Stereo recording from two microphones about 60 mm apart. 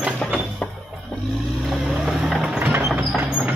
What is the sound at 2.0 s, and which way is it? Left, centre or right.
Vehicle, centre.